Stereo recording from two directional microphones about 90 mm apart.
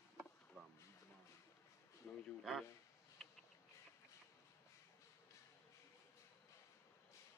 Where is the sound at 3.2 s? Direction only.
5° right (ahead or behind).